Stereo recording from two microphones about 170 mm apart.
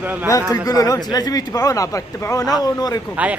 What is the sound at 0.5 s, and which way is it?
Speech, 20° left (ahead or behind).